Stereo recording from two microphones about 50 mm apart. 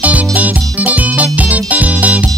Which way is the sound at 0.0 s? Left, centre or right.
Right.